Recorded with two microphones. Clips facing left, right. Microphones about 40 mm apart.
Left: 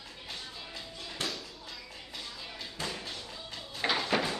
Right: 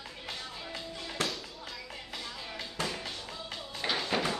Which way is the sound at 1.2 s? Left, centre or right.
Right.